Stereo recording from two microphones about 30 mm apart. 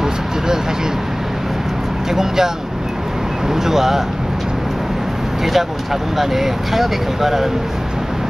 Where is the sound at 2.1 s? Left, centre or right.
Centre.